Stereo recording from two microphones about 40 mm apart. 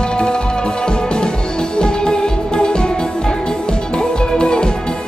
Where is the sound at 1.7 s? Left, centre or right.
Centre.